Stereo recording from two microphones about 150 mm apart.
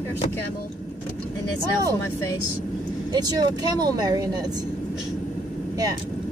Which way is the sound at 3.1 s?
25° right (ahead or behind).